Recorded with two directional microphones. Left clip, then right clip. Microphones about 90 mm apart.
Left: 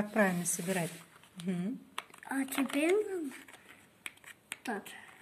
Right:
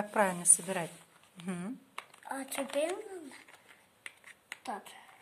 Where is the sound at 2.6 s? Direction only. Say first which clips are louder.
Left 2 dB; 20° left (ahead or behind).